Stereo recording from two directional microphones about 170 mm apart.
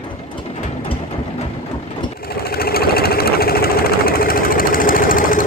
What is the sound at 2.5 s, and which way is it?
Sewing machine, 65° left (ahead or behind).